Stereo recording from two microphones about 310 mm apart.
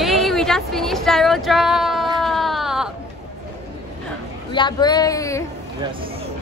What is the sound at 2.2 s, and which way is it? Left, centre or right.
Baby cry, centre.